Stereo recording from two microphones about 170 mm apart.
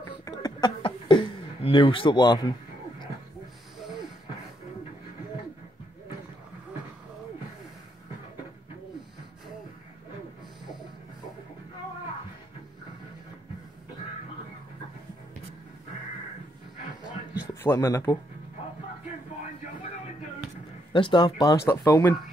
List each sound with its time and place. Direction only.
0.2 s a sound: 20° left (ahead or behind)
17.6 s speech: 15° left (ahead or behind)
20.9 s speech: 30° left (ahead or behind)